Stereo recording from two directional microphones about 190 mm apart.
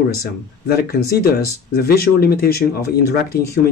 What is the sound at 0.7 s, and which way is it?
Speech, 55° left (ahead or behind).